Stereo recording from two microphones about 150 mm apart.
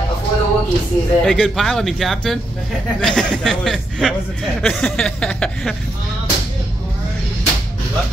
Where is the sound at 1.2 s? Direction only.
Centre (ahead or behind).